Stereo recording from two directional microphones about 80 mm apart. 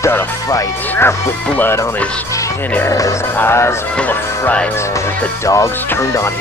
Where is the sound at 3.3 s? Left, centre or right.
Left.